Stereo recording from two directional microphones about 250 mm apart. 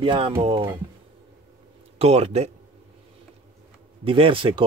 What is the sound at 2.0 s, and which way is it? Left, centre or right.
Speech, right.